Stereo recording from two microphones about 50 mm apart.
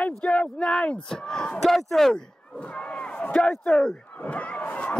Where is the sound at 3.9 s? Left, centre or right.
Left.